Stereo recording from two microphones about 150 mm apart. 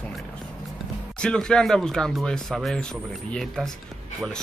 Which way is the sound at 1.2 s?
5° left (ahead or behind).